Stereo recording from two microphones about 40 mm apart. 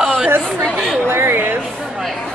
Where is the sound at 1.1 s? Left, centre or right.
Right.